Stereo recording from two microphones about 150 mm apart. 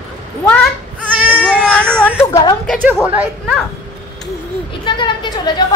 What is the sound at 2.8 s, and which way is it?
Speech, 10° right (ahead or behind).